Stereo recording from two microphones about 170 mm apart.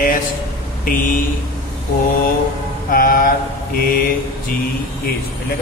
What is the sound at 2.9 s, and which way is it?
Speech, 55° left (ahead or behind).